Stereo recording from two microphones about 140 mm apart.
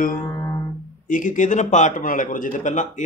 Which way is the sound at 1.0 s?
70° left (ahead or behind).